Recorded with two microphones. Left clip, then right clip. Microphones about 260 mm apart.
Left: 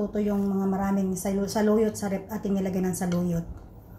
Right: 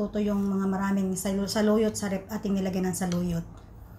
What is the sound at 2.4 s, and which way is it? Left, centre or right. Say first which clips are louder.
Speech: left 2 dB; centre.